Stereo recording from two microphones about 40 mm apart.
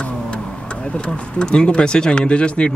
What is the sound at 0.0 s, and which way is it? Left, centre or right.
Vehicle, left.